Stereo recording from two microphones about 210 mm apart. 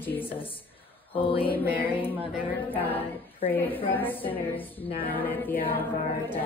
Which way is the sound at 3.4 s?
10° left (ahead or behind).